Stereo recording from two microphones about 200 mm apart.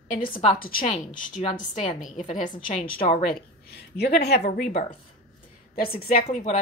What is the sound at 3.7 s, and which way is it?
Speech, 55° left (ahead or behind).